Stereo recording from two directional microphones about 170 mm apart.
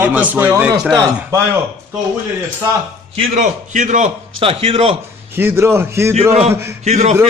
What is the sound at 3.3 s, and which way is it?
A man's voice, 45° right (ahead or behind).